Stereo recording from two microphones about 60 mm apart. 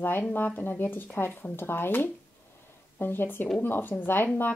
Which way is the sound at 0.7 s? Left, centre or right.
Left.